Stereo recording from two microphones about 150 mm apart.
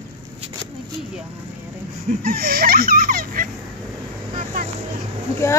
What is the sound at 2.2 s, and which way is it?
Speech, 75° right (ahead or behind).